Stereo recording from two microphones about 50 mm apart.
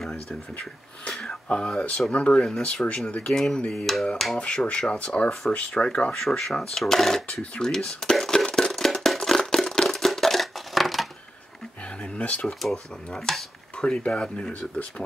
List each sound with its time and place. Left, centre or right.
1.3 s speech: centre
4.4 s speech: centre
6.1 s speech: centre
8.5 s a sound: centre
12.0 s a sound: left
12.6 s speech: centre
13.7 s speech: left